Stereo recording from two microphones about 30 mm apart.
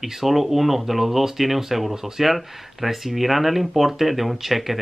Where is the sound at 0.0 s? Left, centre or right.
Centre.